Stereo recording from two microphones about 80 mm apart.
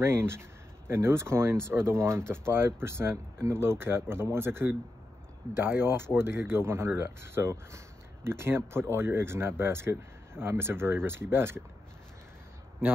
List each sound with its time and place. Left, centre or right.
0.0 s speech: right